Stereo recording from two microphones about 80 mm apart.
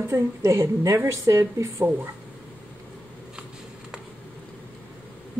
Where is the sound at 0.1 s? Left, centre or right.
Right.